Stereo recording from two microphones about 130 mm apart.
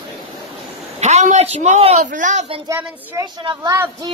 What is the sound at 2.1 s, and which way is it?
Speech, 80° right.